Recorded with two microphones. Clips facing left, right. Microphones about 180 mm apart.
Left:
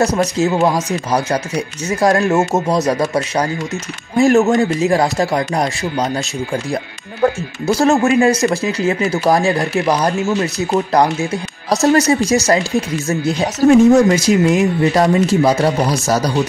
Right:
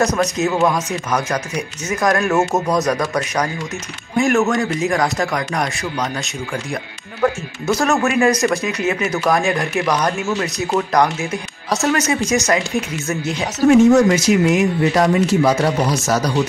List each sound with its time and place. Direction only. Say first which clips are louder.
0.2 s speech: left 2 dB; 20° left (ahead or behind)
0.7 s a man's voice: left 3 dB; 35° left (ahead or behind)
7.6 s speech: left 4 dB; 35° left (ahead or behind)